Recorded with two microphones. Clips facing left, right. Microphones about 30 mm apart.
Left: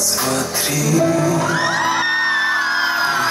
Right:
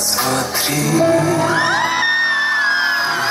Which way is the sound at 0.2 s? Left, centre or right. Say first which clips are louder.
Right 4 dB; right.